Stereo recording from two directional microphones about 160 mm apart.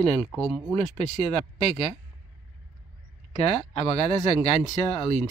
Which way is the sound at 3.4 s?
40° left (ahead or behind).